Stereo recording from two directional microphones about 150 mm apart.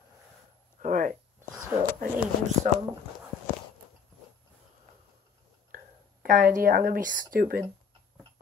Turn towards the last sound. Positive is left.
turn(degrees=-70)  # may be behind; listen again after turning